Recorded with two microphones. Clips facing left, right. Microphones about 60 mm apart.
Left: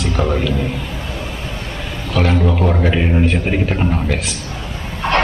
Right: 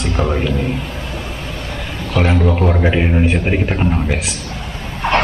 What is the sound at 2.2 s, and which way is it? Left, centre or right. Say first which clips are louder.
A man's voice: right 1 dB; right.